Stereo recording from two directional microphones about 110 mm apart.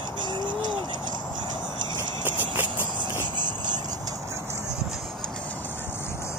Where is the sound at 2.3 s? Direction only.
15° right (ahead or behind).